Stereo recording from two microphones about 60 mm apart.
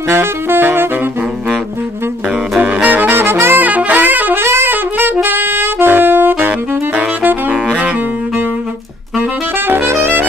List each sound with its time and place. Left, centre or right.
0.1 s saxophone: right
2.6 s saxophone: right
3.2 s saxophone: right
3.6 s saxophone: right
9.7 s saxophone: right